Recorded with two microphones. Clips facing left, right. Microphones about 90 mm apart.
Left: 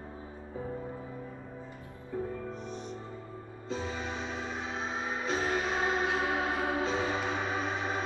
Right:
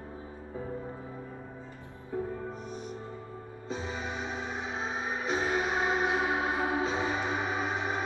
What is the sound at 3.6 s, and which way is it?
Music, 20° right (ahead or behind).